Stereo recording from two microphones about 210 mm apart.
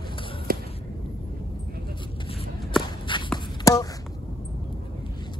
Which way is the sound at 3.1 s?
25° left (ahead or behind).